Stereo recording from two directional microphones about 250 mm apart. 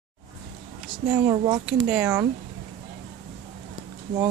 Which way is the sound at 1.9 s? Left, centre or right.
Centre.